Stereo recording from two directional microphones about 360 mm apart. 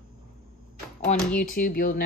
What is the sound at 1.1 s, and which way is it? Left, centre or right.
Speech, centre.